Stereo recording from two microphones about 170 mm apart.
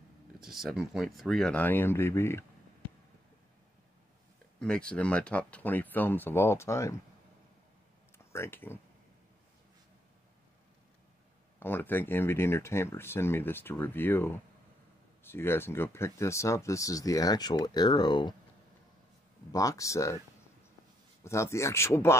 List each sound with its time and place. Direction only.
0.4 s speech: centre (ahead or behind); by 2.4 s 15° left (ahead or behind)
4.6 s speech: 5° left (ahead or behind)
8.3 s speech: 15° left (ahead or behind)
11.6 s speech: 10° left (ahead or behind)
19.5 s speech: 20° left (ahead or behind)
21.2 s speech: 15° left (ahead or behind)